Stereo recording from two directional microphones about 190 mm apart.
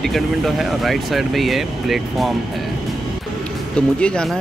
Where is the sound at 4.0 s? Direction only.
5° left (ahead or behind).